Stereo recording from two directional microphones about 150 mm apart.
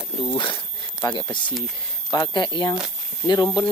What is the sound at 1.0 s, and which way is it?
Speech, 30° left (ahead or behind).